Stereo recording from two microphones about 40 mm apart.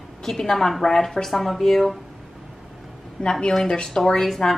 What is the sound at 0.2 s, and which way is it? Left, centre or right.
A woman's voice, centre.